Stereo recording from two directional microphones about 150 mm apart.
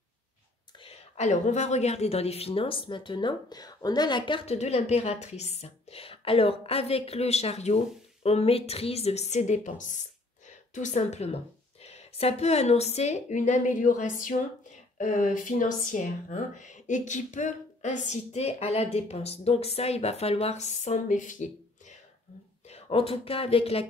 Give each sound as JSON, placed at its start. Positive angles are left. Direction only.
{"t": 0.7, "sound": "a woman's voice", "side_deg": 40}
{"t": 22.7, "sound": "speech", "side_deg": 40}